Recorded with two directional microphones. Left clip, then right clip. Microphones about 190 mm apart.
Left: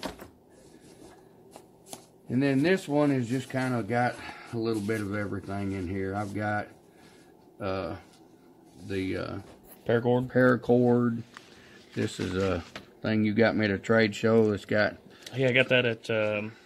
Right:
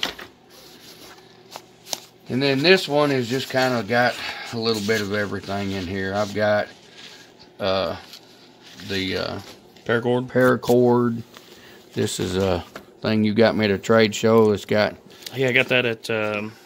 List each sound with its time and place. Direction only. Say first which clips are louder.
2.3 s speech: right 8 dB; 30° right (ahead or behind); by 9.4 s 50° right (ahead or behind)
9.8 s speech: right 4 dB; 5° right (ahead or behind)
10.3 s speech: right 6 dB; 45° right (ahead or behind)
10.7 s speech: right 6 dB; 60° right (ahead or behind)
15.2 s speech: right 5 dB; 5° right (ahead or behind)